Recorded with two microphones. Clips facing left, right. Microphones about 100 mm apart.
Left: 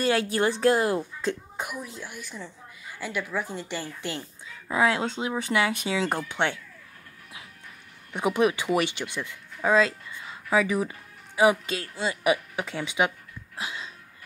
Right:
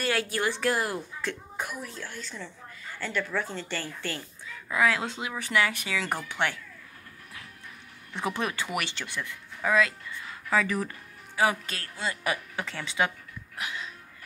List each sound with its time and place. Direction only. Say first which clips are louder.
0.0 s speech: left 5 dB; 25° left (ahead or behind)
8.1 s speech: left 7 dB; 15° left (ahead or behind)
11.3 s speech: left 5 dB; 20° left (ahead or behind)
13.6 s a sound: left 1 dB; 25° left (ahead or behind)